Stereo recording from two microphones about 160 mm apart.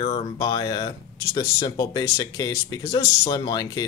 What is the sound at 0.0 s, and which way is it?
Speech, 30° left (ahead or behind).